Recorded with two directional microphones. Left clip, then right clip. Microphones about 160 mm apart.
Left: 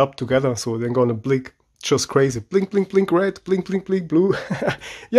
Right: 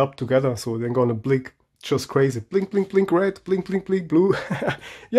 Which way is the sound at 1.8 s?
25° left (ahead or behind).